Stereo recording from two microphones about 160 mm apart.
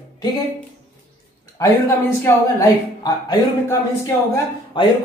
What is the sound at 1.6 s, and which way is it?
Speech, 20° left (ahead or behind).